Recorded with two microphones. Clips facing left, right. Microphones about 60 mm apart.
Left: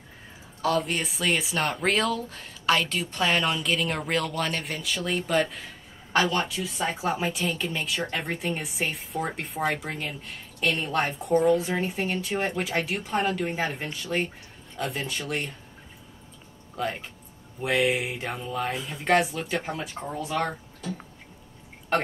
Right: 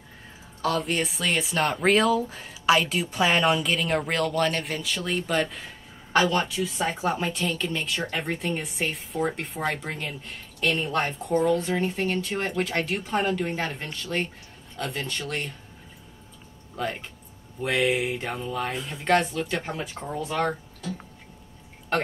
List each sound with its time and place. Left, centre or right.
0.6 s speech: centre
16.7 s speech: centre